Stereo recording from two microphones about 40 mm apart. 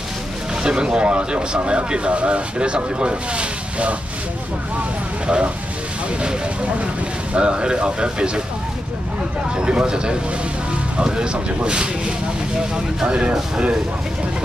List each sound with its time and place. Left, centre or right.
0.7 s speech: right
5.2 s speech: right
7.3 s speech: right
9.6 s speech: right
11.3 s speech: right